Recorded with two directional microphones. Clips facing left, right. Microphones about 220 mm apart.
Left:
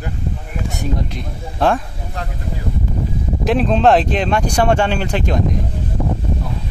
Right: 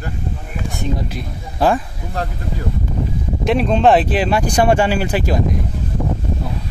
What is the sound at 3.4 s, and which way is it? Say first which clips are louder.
Speech: even; centre (ahead or behind).